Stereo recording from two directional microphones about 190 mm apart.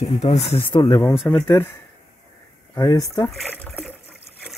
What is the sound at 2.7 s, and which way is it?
Speech, 20° left (ahead or behind).